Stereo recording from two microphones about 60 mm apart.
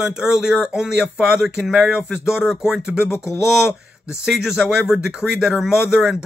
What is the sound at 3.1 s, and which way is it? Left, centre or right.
Speech, left.